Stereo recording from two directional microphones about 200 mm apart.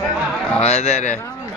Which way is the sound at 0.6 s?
35° left (ahead or behind).